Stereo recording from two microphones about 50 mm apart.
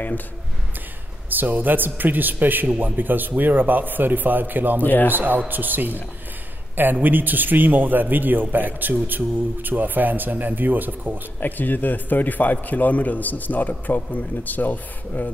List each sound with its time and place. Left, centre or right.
1.3 s a man's voice: right
4.8 s a man's voice: left
5.1 s a man's voice: right
11.3 s a man's voice: left